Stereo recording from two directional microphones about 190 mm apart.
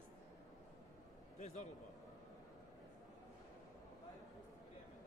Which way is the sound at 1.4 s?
40° left (ahead or behind).